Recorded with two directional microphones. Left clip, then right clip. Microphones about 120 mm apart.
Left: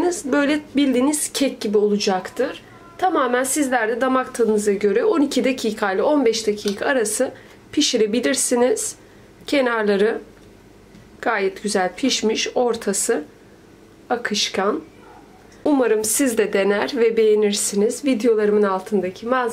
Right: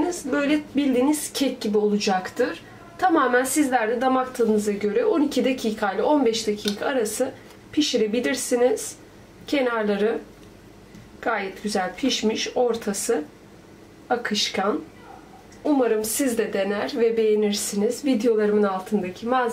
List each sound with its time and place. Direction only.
0.3 s speech: 40° left (ahead or behind)
2.0 s speech: 25° left (ahead or behind)
3.2 s speech: 35° left (ahead or behind)
11.1 s speech: 40° left (ahead or behind)
15.7 s speech: 40° left (ahead or behind)